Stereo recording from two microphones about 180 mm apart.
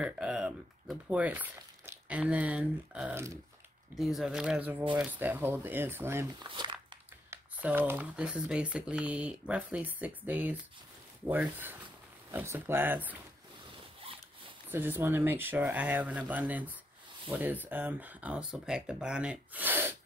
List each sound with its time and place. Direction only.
0.0 s speech: 5° right (ahead or behind)
6.4 s speech: 25° right (ahead or behind)
7.2 s speech: 10° right (ahead or behind)
14.7 s speech: 10° right (ahead or behind)